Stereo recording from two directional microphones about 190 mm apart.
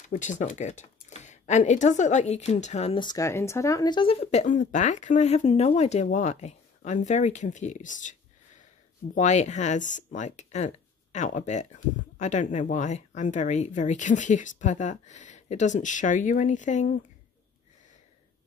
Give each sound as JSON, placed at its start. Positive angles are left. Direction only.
{"t": 0.1, "sound": "speech", "side_deg": 40}